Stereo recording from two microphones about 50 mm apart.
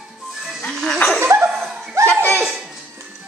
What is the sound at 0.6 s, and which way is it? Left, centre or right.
Music, centre.